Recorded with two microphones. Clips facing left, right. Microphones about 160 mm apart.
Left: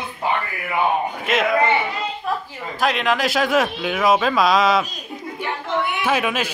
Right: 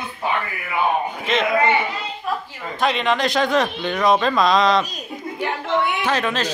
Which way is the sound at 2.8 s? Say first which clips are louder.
Even; centre (ahead or behind).